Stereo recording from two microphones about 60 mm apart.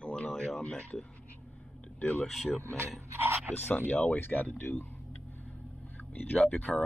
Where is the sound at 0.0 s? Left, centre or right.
Centre.